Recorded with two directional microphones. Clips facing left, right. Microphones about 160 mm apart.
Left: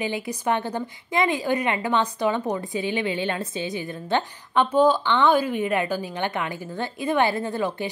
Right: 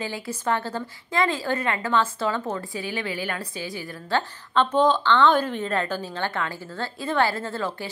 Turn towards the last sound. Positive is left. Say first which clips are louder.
# left 3 dB
turn(degrees=15)  # may be behind; listen again after turning